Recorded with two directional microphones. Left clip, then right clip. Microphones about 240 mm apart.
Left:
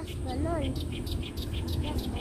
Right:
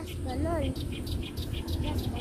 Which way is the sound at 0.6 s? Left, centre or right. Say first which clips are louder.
Even; centre.